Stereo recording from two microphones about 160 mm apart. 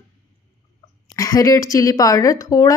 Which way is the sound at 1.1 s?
20° left (ahead or behind).